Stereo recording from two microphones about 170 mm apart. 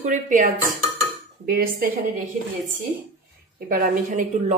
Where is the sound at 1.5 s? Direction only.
60° right (ahead or behind).